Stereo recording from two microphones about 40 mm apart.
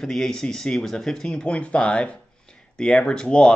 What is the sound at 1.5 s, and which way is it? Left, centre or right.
Speech, left.